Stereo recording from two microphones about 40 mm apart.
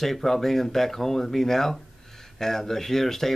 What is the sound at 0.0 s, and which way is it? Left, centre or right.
Speech, centre.